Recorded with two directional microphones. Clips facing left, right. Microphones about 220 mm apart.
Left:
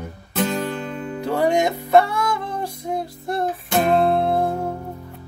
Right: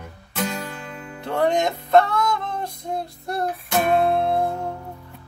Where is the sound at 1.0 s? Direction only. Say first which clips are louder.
Left 9 dB; 40° left (ahead or behind).